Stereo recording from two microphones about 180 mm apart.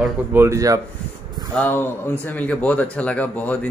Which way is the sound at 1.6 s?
10° left (ahead or behind).